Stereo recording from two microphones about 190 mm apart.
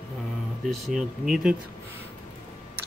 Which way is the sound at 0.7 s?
Centre (ahead or behind).